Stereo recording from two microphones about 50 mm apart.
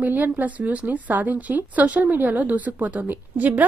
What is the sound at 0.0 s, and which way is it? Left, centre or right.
A woman's voice, right.